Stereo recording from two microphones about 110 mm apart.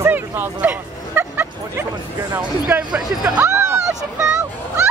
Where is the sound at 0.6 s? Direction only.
15° right (ahead or behind).